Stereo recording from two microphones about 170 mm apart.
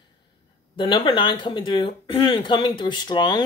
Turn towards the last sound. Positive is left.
turn(degrees=25)  # may be behind; listen again after turning